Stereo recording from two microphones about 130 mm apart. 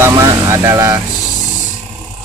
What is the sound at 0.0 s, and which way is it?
Vehicle, 25° right (ahead or behind).